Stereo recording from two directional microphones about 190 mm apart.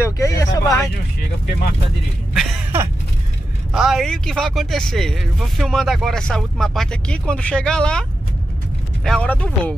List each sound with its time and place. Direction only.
0.0 s a sound: 15° left (ahead or behind)
2.3 s speech: centre (ahead or behind)
9.0 s speech: 5° left (ahead or behind)